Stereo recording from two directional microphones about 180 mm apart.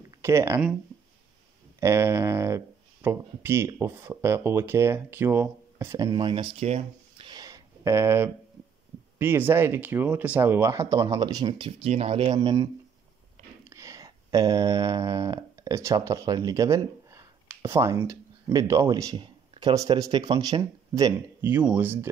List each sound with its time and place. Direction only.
0.2 s speech: 15° right (ahead or behind)
1.8 s speech: 15° right (ahead or behind); by 12.4 s 30° right (ahead or behind)
12.4 s speech: 20° right (ahead or behind)
13.7 s a sound: 15° right (ahead or behind)